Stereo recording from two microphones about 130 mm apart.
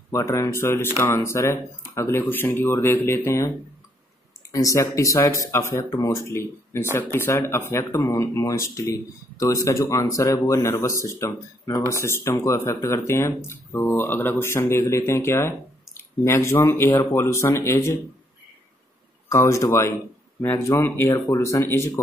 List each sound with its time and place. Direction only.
0.1 s speech: 25° left (ahead or behind)
19.2 s speech: 20° left (ahead or behind)